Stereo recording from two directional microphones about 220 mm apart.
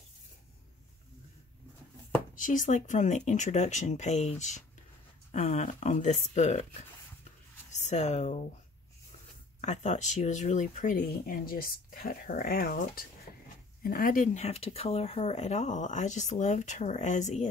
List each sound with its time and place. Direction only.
2.3 s speech: 35° left (ahead or behind)
7.7 s speech: 30° left (ahead or behind)
9.6 s speech: 30° left (ahead or behind)